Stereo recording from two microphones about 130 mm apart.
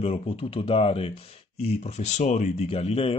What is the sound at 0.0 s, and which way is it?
Speech, 50° left (ahead or behind).